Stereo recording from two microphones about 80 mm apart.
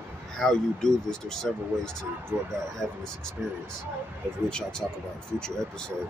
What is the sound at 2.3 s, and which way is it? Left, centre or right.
Speech, right.